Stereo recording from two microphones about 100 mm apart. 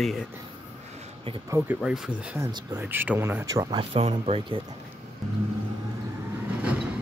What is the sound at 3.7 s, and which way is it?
Speech, 65° right (ahead or behind).